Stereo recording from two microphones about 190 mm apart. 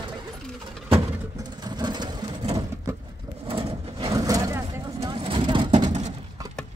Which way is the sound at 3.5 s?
30° right (ahead or behind).